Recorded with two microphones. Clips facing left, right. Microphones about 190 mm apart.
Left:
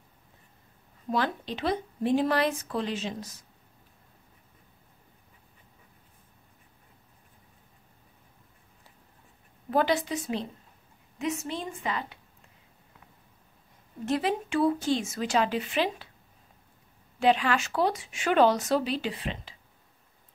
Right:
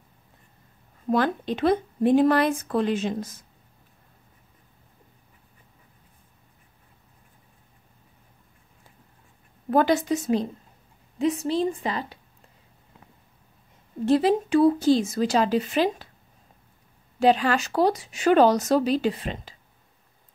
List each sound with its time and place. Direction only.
1.1 s speech: 50° right (ahead or behind)
9.7 s speech: 45° right (ahead or behind)
11.1 s speech: 35° right (ahead or behind)
14.0 s speech: 35° right (ahead or behind)
17.2 s speech: 40° right (ahead or behind)